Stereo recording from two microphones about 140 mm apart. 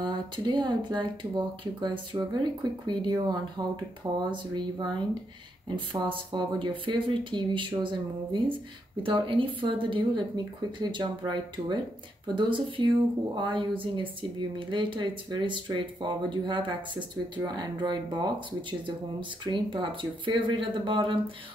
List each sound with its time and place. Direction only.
0.0 s speech: 35° right (ahead or behind)